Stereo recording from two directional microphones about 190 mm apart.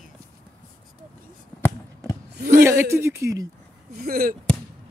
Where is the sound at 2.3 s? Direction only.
50° right (ahead or behind).